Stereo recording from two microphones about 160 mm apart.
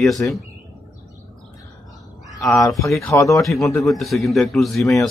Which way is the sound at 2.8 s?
20° left (ahead or behind).